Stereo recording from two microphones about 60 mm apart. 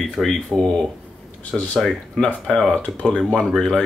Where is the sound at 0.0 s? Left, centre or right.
Centre.